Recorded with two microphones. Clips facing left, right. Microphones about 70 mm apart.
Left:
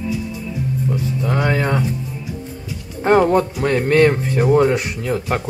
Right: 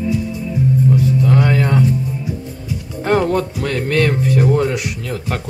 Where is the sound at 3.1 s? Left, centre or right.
Left.